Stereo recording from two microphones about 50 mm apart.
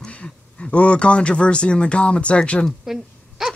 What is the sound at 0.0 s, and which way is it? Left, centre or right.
Speech, left.